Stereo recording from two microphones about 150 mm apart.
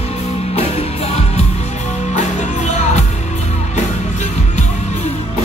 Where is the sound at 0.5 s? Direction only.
45° left (ahead or behind).